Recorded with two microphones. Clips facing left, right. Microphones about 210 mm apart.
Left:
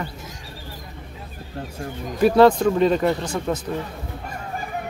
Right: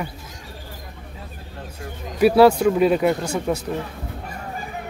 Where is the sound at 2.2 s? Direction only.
10° right (ahead or behind).